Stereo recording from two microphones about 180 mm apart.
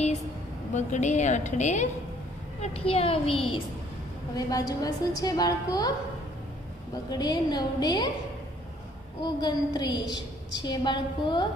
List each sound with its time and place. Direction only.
0.7 s a woman's voice: 40° left (ahead or behind); by 5.9 s 20° left (ahead or behind)
7.1 s a woman's voice: 25° left (ahead or behind)
9.2 s a woman's voice: 25° left (ahead or behind)